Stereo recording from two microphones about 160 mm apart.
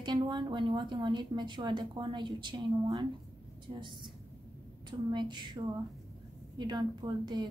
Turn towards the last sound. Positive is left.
turn(degrees=-25)  # may be behind; listen again after turning